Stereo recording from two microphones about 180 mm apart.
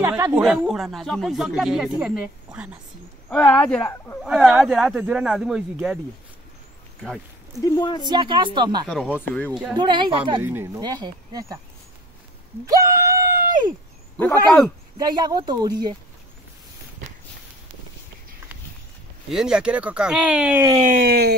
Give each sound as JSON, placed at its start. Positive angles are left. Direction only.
{"t": 0.0, "sound": "speech", "side_deg": -10}
{"t": 3.3, "sound": "speech", "side_deg": 5}
{"t": 4.2, "sound": "speech", "side_deg": 0}
{"t": 7.0, "sound": "a sound", "side_deg": 0}
{"t": 7.6, "sound": "speech", "side_deg": 20}
{"t": 8.1, "sound": "speech", "side_deg": -25}
{"t": 8.8, "sound": "speech", "side_deg": 0}
{"t": 9.8, "sound": "speech", "side_deg": -25}
{"t": 10.4, "sound": "speech", "side_deg": -10}
{"t": 12.6, "sound": "a sound", "side_deg": -20}
{"t": 15.0, "sound": "speech", "side_deg": -25}
{"t": 19.3, "sound": "speech", "side_deg": -5}
{"t": 20.8, "sound": "a sound", "side_deg": -50}